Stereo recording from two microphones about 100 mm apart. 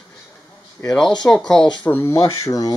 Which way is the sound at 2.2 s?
40° left (ahead or behind).